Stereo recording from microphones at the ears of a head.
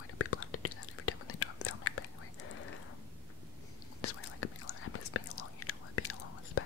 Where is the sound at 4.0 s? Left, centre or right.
Left.